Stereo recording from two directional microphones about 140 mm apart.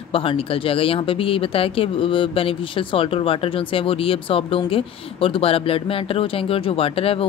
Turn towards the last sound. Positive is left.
turn(degrees=45)  # may be behind; listen again after turning